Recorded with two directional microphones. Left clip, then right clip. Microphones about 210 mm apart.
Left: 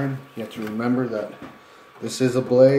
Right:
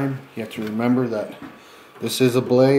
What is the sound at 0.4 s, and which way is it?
Speech, 30° right (ahead or behind).